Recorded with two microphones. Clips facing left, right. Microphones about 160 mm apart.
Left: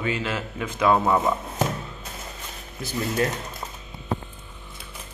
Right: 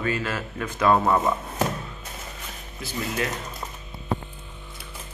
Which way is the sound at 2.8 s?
45° left (ahead or behind).